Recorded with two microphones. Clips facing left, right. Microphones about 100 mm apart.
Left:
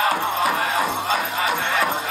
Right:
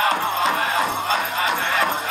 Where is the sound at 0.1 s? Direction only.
20° left (ahead or behind).